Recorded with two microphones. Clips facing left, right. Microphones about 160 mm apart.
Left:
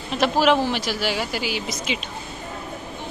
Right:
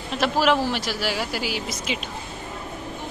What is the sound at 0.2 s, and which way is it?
Speech, centre (ahead or behind).